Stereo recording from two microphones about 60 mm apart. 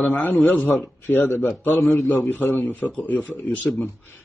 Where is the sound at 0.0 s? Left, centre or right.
Left.